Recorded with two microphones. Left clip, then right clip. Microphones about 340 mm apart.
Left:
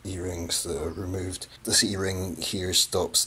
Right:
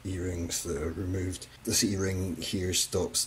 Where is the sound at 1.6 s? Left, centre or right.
Centre.